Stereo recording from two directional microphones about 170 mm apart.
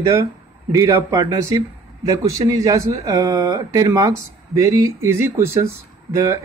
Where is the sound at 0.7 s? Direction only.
20° right (ahead or behind).